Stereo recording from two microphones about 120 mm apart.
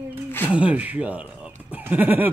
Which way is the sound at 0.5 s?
10° right (ahead or behind).